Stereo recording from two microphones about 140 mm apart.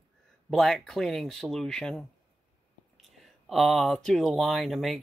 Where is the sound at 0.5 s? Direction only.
Centre (ahead or behind).